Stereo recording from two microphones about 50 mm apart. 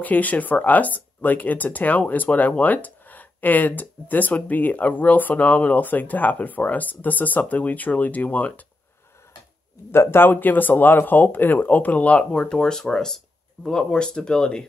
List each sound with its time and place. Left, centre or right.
0.0 s speech: left
9.8 s speech: left; by 14.6 s centre